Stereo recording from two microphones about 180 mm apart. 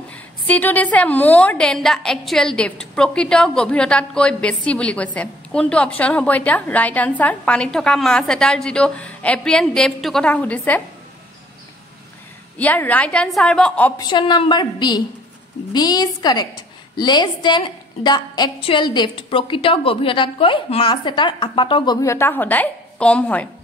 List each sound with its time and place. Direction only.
0.1 s a woman's voice: 10° left (ahead or behind)
12.5 s a woman's voice: 10° left (ahead or behind)
13.9 s a woman's voice: 25° left (ahead or behind)
22.0 s a woman's voice: 15° left (ahead or behind)